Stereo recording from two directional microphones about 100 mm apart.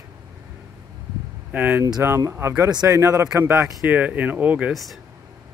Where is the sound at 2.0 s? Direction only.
25° right (ahead or behind).